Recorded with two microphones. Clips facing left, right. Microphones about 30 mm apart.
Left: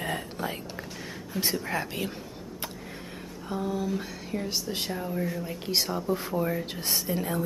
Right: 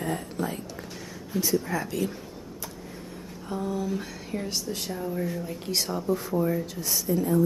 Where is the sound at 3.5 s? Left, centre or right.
Centre.